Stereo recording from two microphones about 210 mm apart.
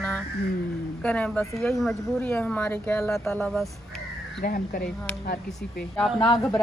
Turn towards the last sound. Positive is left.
turn(degrees=5)  # may be behind; listen again after turning